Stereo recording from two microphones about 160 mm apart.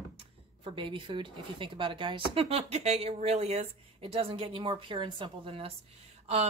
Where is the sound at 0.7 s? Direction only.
30° right (ahead or behind).